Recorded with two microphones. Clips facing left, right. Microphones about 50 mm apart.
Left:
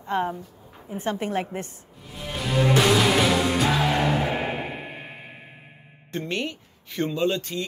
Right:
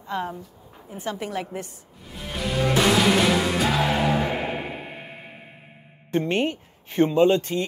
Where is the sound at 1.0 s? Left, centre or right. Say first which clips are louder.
Left 3 dB; left.